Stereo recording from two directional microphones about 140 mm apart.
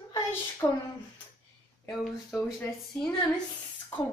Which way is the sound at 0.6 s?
30° left (ahead or behind).